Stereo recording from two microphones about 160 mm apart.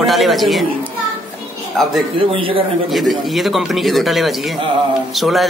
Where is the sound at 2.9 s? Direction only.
Centre (ahead or behind).